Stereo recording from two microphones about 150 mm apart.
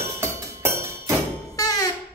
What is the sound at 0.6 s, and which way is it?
Music, 15° right (ahead or behind).